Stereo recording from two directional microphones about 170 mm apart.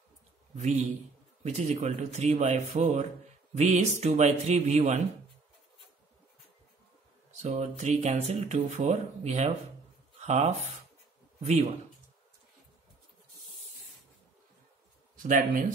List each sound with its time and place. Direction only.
1.4 s speech: 40° right (ahead or behind)
7.3 s speech: 40° right (ahead or behind)
15.2 s speech: 50° right (ahead or behind)